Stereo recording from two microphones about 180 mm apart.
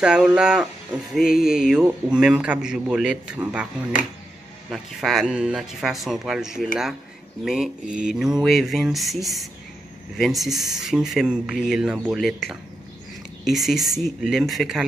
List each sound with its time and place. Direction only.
0.0 s a man's voice: 5° right (ahead or behind)
4.6 s a man's voice: centre (ahead or behind)
10.5 s speech: 20° right (ahead or behind)
10.8 s a man's voice: centre (ahead or behind)